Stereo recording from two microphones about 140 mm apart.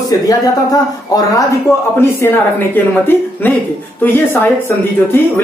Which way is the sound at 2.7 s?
15° left (ahead or behind).